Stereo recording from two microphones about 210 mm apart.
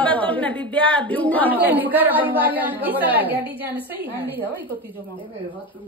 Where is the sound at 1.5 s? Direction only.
10° right (ahead or behind).